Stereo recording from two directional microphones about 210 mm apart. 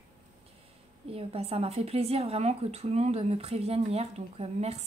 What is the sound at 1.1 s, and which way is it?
A woman's voice, 30° right (ahead or behind).